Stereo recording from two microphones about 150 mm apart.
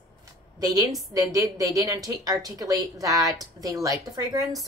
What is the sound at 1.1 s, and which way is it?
Speech, 25° right (ahead or behind).